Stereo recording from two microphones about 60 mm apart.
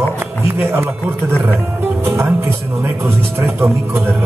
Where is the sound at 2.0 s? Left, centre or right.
Right.